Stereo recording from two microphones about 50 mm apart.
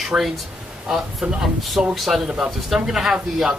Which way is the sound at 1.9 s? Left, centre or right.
Centre.